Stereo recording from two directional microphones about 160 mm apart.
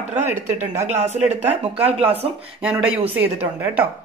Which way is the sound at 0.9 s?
45° right (ahead or behind).